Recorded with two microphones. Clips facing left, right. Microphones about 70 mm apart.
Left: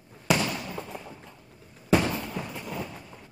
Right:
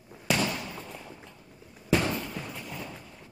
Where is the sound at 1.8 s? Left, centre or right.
Centre.